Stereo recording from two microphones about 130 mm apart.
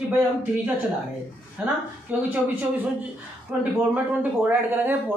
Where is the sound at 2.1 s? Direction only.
10° right (ahead or behind).